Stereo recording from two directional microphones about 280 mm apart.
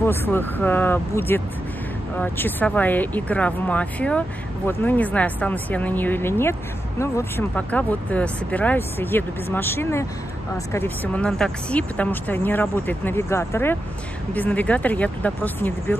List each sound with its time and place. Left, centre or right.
0.0 s speech: centre